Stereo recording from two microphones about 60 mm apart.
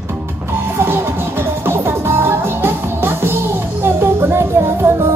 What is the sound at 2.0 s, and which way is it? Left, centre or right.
Music, right.